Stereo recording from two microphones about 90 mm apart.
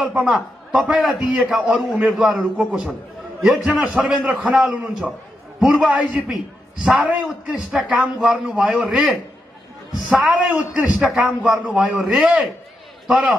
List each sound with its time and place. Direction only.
0.0 s a man's voice: 10° right (ahead or behind)
1.3 s a man's voice: 15° right (ahead or behind)